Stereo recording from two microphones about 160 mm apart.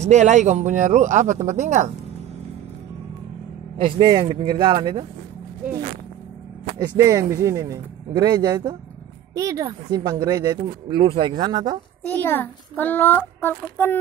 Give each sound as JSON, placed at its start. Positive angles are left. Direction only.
{"t": 0.0, "sound": "speech", "side_deg": -45}
{"t": 3.7, "sound": "speech", "side_deg": -30}
{"t": 7.0, "sound": "speech", "side_deg": -20}
{"t": 10.9, "sound": "speech", "side_deg": -35}
{"t": 12.1, "sound": "a child's voice", "side_deg": 10}